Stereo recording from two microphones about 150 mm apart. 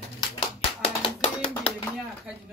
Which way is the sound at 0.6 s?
35° left (ahead or behind).